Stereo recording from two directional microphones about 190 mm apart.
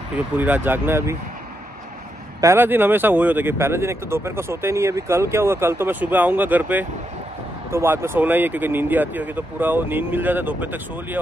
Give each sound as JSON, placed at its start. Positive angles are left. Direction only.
{"t": 0.4, "sound": "speech", "side_deg": -10}
{"t": 2.4, "sound": "speech", "side_deg": -10}